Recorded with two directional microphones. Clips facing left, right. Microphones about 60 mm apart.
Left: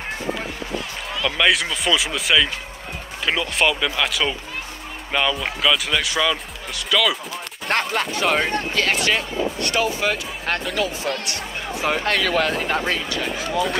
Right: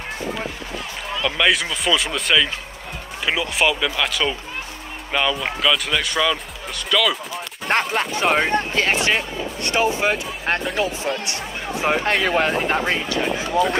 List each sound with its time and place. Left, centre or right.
1.2 s speech: centre
7.8 s speech: centre
8.3 s speech: right